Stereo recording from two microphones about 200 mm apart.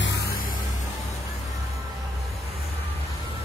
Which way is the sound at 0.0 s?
55° left (ahead or behind).